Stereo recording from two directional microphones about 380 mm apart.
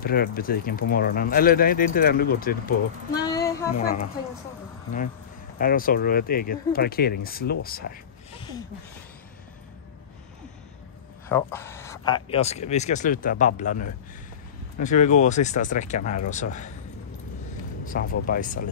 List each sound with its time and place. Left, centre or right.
0.0 s speech: left
3.1 s female singing: centre
3.8 s speech: left
5.6 s speech: left
8.4 s rub: centre
11.2 s speech: centre
17.8 s speech: left